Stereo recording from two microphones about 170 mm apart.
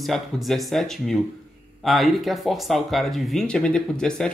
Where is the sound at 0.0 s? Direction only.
Centre (ahead or behind).